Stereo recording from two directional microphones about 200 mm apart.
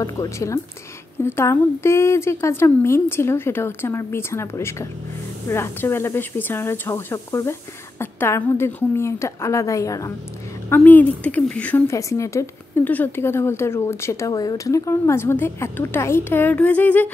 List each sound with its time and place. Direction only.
0.0 s a woman's voice: 15° left (ahead or behind)